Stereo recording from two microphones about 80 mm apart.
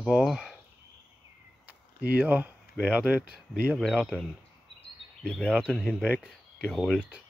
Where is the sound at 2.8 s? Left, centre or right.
Centre.